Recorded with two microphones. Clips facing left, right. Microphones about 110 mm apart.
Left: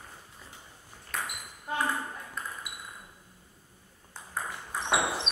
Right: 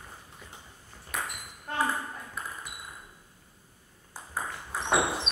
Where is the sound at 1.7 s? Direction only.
5° left (ahead or behind).